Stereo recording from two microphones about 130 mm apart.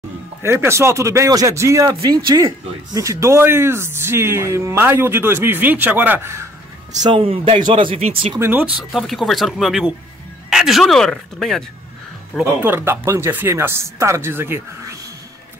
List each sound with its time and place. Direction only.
0.4 s speech: 20° right (ahead or behind)
7.0 s speech: 35° right (ahead or behind)
8.4 s speech: 15° right (ahead or behind)
8.9 s speech: centre (ahead or behind)
12.6 s speech: 15° right (ahead or behind)